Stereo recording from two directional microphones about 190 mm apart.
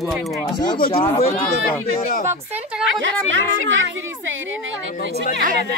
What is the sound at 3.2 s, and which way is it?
Speech, 80° right.